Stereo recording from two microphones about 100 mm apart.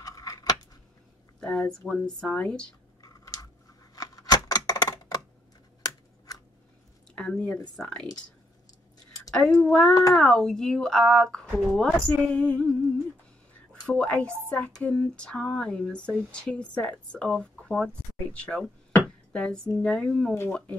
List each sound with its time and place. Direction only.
0.0 s a sound: 40° left (ahead or behind)
1.4 s speech: 10° left (ahead or behind)
3.0 s a sound: 40° left (ahead or behind)
3.9 s scissors: 35° left (ahead or behind)
7.2 s speech: 10° left (ahead or behind)
9.3 s speech: 5° left (ahead or behind)
13.8 s speech: 15° left (ahead or behind)
18.9 s a sound: 20° left (ahead or behind)
19.8 s speech: 10° left (ahead or behind)